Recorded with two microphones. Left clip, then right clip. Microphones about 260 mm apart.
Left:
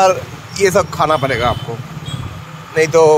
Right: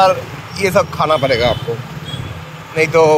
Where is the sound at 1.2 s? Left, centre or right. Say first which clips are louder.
Right 2 dB; centre.